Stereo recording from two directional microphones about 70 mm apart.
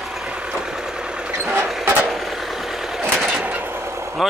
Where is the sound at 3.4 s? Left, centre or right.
Right.